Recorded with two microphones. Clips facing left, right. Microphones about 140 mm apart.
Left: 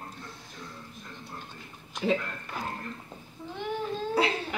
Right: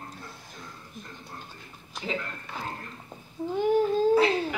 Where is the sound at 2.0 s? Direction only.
75° left (ahead or behind).